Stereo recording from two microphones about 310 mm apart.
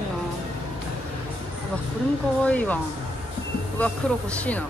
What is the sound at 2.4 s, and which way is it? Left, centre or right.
Speech, centre.